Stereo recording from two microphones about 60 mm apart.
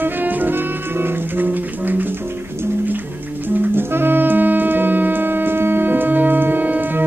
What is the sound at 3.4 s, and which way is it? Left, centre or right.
Music, right.